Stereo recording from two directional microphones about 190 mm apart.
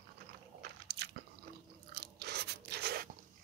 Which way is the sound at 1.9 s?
60° right (ahead or behind).